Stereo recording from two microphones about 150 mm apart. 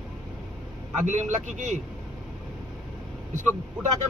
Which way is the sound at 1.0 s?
55° right (ahead or behind).